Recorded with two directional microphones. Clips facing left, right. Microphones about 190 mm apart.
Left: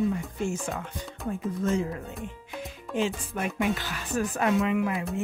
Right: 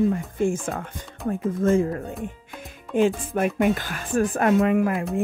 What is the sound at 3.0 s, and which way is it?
A woman's voice, 50° right (ahead or behind).